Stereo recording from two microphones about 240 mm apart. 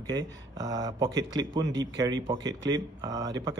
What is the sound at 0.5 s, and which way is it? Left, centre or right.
Speech, centre.